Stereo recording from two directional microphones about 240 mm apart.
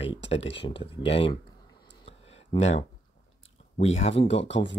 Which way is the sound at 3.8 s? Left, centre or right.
Left.